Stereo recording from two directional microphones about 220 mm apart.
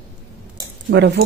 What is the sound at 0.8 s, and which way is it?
Speech, 50° right (ahead or behind).